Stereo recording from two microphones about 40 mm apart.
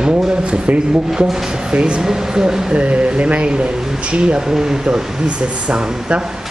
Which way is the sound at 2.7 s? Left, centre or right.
Right.